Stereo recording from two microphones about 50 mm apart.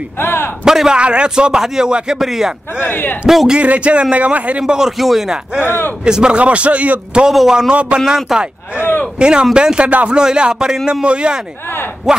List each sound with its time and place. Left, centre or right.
0.2 s speech: left
0.7 s speech: centre
2.1 s a man's voice: centre
2.8 s speech: left
3.3 s a man's voice: centre
3.5 s speech: right
4.6 s speech: centre
5.6 s speech: left
6.0 s speech: centre
7.2 s speech: centre
7.7 s speech: right
8.3 s a man's voice: centre
9.2 s speech: centre